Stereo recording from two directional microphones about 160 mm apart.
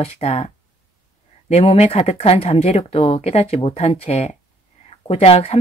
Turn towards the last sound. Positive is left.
turn(degrees=40)  # may be behind; listen again after turning